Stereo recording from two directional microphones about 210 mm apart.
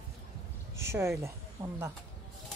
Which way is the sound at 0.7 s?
15° right (ahead or behind).